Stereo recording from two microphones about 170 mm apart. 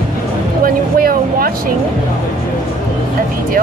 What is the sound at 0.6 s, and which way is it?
Vehicle, 60° right (ahead or behind).